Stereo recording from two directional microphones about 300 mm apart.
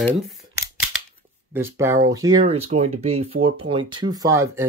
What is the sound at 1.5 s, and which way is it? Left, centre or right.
Speech, centre.